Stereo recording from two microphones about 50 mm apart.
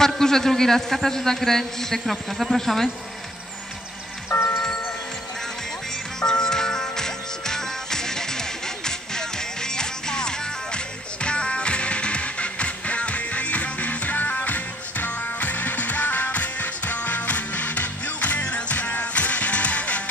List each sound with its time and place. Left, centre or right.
0.0 s a man's voice: centre
6.1 s music: centre; by 20.0 s left